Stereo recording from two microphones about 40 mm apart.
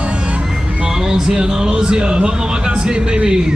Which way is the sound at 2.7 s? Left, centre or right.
Right.